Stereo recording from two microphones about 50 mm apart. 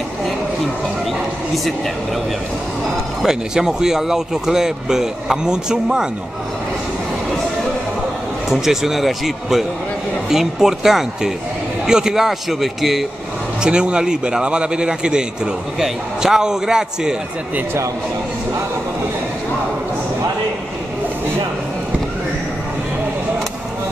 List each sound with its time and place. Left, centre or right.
3.2 s speech: centre
8.5 s speech: centre
13.6 s speech: centre